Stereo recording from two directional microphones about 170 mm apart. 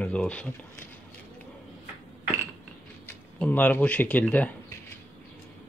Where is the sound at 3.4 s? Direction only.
10° left (ahead or behind).